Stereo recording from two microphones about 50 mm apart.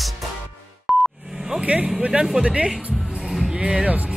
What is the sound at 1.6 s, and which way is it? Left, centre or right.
Speech, right.